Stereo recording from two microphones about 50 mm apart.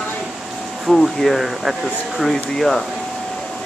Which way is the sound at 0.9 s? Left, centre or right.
Centre.